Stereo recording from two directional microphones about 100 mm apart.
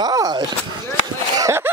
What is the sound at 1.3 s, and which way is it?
Chuckle, 35° right (ahead or behind).